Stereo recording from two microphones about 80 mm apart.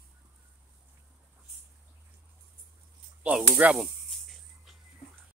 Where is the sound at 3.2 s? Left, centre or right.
Centre.